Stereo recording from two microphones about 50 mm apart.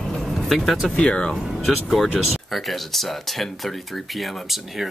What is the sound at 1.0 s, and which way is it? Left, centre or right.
Speech, centre.